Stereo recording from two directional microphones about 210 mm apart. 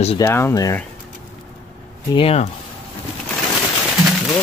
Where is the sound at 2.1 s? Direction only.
25° left (ahead or behind).